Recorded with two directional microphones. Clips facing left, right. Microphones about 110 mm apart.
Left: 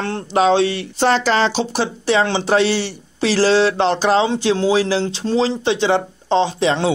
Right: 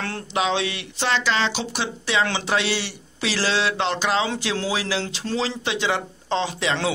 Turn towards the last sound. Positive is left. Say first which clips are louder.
# left 7 dB
turn(degrees=30)  # may be behind; listen again after turning